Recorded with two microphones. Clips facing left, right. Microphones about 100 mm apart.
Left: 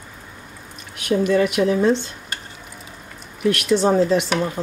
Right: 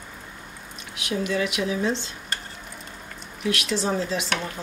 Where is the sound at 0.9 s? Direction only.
50° left (ahead or behind).